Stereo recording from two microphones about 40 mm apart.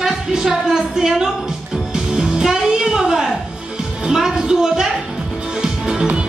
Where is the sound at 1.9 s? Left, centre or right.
Centre.